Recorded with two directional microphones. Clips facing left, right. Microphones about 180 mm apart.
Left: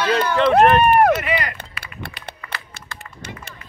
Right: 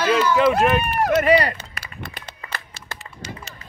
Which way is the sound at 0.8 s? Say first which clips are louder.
Left 6 dB; 55° left (ahead or behind).